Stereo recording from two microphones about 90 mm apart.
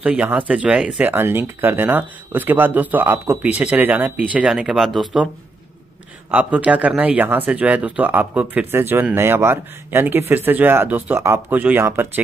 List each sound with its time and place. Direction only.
0.0 s speech: 15° right (ahead or behind)
1.0 s speech: 25° right (ahead or behind); by 5.2 s centre (ahead or behind)
6.3 s speech: 15° right (ahead or behind)